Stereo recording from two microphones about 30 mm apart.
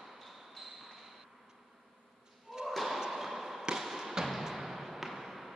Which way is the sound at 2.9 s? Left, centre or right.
Centre.